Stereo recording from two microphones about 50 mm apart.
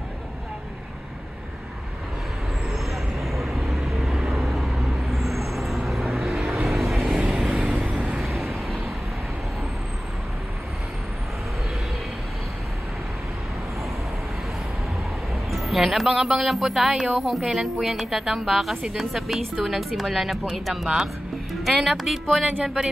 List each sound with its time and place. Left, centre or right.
2.7 s vehicle: centre
7.2 s vehicle: centre
8.1 s vehicle: centre
15.5 s music: centre
16.3 s speech: centre